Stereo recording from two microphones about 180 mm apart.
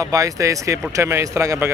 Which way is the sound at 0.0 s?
15° right (ahead or behind).